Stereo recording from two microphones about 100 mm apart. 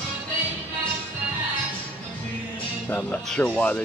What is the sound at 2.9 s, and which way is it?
Speech, 15° left (ahead or behind).